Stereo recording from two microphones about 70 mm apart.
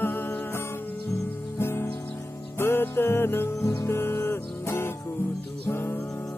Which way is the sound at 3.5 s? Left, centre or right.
Left.